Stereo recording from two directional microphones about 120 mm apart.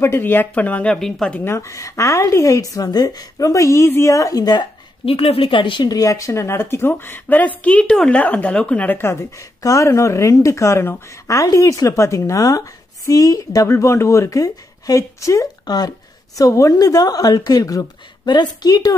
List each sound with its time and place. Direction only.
0.0 s speech: 20° left (ahead or behind)
1.4 s speech: 20° left (ahead or behind)
5.0 s speech: 50° left (ahead or behind); by 18.9 s 30° left (ahead or behind)